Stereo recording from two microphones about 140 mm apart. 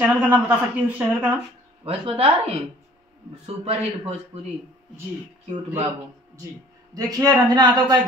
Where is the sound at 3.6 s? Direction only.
50° right (ahead or behind).